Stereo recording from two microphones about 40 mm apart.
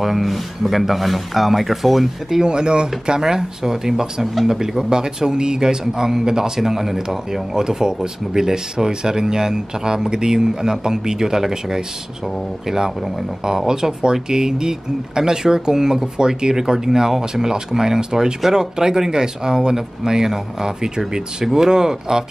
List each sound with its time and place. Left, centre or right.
0.0 s speech: centre
2.4 s speech: right; by 7.4 s centre
7.5 s speech: centre